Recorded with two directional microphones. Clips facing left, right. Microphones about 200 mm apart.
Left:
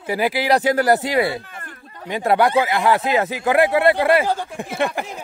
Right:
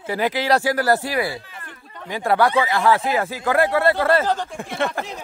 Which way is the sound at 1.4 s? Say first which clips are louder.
Left 3 dB; 50° left (ahead or behind).